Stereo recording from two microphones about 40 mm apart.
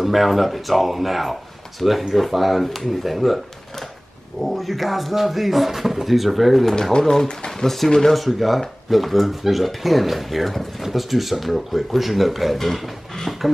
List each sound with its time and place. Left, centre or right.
0.0 s speech: centre
4.4 s speech: centre
6.7 s speech: centre